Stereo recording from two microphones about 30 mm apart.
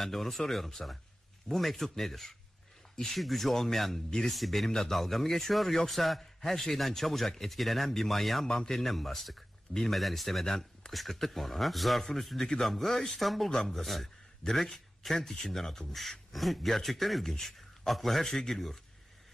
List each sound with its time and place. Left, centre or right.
0.0 s a man's voice: centre
4.6 s a man's voice: centre
8.5 s speech: centre
8.8 s a man's voice: centre